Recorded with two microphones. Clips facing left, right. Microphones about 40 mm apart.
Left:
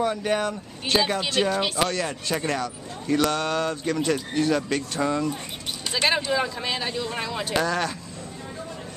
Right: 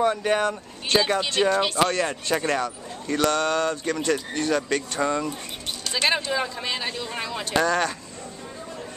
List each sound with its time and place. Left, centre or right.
0.0 s speech: centre